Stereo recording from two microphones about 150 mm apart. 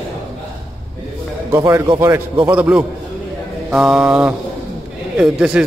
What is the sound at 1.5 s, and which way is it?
A man's voice, 20° right (ahead or behind).